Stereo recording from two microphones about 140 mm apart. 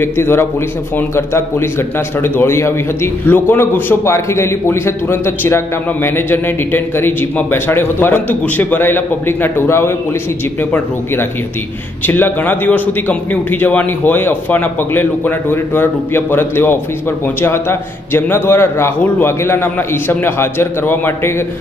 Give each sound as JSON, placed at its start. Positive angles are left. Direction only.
{"t": 0.0, "sound": "a man's voice", "side_deg": 15}